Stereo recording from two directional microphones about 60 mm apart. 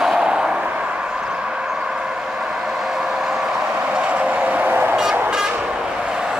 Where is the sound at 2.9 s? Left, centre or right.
Centre.